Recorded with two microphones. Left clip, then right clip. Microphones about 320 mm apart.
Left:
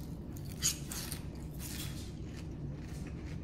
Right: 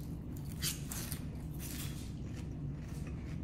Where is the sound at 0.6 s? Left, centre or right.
Centre.